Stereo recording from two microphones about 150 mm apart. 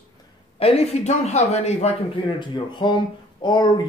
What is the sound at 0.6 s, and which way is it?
A man's voice, 45° left (ahead or behind).